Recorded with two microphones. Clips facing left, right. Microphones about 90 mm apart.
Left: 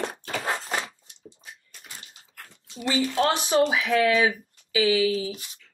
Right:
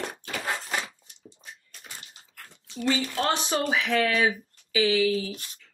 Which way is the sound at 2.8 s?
15° left (ahead or behind).